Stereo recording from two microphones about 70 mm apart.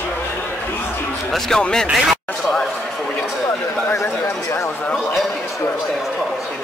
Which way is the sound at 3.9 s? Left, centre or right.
Left.